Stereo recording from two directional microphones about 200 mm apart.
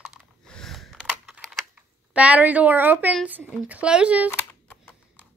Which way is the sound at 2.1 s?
5° right (ahead or behind).